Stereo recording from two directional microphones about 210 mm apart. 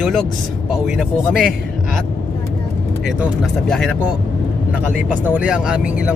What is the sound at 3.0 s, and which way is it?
Speech, 5° right (ahead or behind).